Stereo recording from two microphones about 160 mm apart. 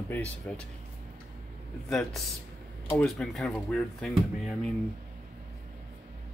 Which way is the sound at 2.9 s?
5° left (ahead or behind).